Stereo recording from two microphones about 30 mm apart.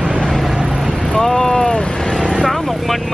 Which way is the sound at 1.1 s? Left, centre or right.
Left.